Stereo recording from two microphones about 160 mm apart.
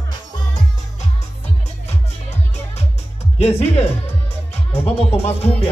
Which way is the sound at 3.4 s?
40° left (ahead or behind).